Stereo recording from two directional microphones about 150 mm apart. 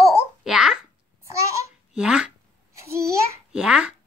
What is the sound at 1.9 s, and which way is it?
Speech, 5° right (ahead or behind).